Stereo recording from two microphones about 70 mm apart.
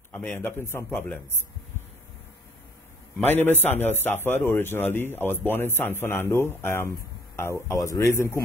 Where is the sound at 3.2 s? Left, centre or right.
Left.